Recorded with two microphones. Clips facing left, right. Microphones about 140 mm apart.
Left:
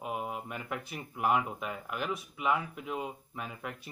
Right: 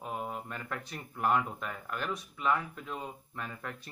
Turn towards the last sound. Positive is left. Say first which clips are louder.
# left 1 dB
turn(degrees=10)  # may be behind; listen again after turning